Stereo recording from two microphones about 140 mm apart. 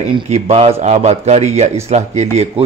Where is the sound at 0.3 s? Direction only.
50° right (ahead or behind).